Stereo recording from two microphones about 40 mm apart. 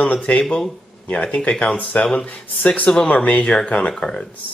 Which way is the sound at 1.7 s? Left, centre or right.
Left.